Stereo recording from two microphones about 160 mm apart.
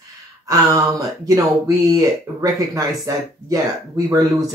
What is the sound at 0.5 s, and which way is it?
Speech, 20° right (ahead or behind).